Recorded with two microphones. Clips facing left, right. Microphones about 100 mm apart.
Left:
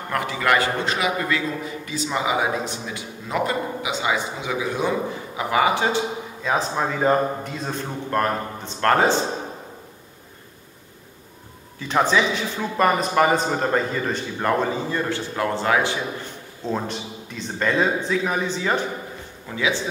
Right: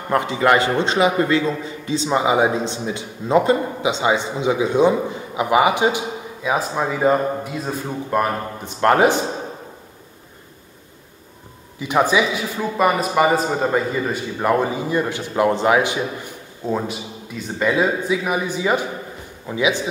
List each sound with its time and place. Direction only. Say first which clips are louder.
0.1 s a man's voice: right 5 dB; 25° right (ahead or behind)
11.8 s a man's voice: right 2 dB; 10° right (ahead or behind)